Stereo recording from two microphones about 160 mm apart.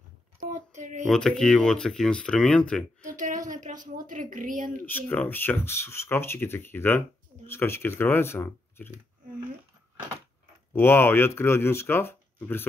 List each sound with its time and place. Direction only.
0.4 s a sound: 55° right (ahead or behind)
1.1 s speech: 5° left (ahead or behind)
3.0 s a woman's voice: 55° right (ahead or behind)
4.8 s speech: 10° left (ahead or behind)
10.7 s speech: 15° left (ahead or behind)